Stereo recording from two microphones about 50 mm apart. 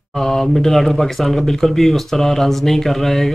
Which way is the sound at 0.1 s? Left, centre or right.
Centre.